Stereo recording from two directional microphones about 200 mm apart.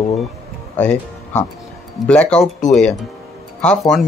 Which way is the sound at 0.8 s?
10° left (ahead or behind).